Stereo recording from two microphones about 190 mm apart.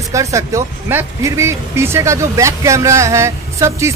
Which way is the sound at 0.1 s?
15° right (ahead or behind).